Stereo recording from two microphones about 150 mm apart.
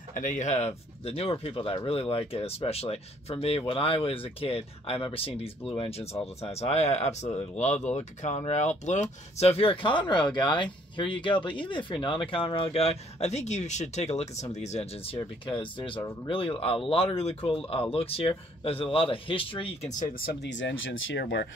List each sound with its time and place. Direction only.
0.1 s speech: 55° left (ahead or behind)